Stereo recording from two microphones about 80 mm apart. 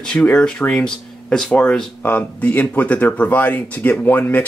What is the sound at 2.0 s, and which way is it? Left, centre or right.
Speech, left.